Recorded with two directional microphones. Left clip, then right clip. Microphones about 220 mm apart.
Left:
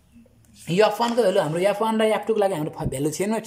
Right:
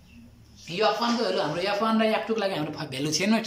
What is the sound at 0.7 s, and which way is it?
Speech, 40° left (ahead or behind).